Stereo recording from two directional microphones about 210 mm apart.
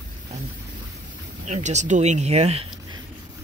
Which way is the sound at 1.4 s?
35° right (ahead or behind).